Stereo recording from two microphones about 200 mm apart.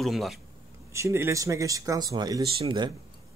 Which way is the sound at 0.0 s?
Centre (ahead or behind).